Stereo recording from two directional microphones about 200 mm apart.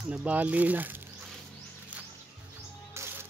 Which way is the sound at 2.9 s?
10° right (ahead or behind).